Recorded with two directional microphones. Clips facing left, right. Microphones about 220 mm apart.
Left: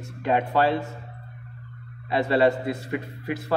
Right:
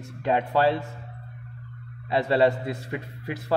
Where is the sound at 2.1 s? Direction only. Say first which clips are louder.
Left 1 dB; 30° right (ahead or behind).